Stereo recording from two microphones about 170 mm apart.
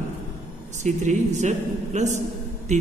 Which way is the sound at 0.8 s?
45° right (ahead or behind).